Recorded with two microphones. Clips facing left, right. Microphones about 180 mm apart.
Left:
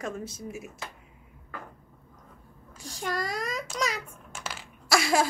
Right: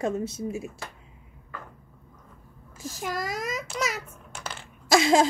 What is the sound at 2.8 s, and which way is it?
A child's voice, 5° right (ahead or behind).